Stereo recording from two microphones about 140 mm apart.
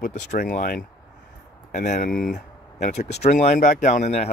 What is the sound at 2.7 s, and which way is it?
Speech, 55° left (ahead or behind).